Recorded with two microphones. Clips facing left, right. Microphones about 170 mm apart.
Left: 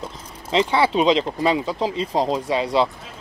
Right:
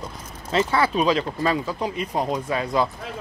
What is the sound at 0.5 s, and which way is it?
Speech, 20° left (ahead or behind).